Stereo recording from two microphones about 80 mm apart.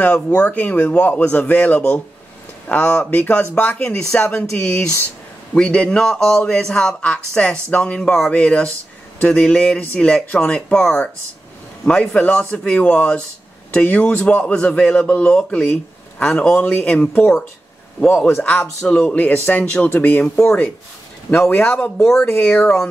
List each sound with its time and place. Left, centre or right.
0.3 s speech: centre
4.6 s a man's voice: centre
21.3 s speech: left; by 22.3 s centre
22.4 s a man's voice: centre